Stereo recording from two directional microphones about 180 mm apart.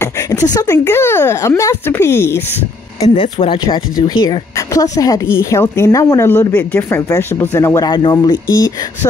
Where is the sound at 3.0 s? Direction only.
30° left (ahead or behind).